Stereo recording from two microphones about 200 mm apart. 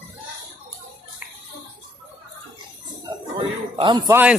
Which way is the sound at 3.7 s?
20° right (ahead or behind).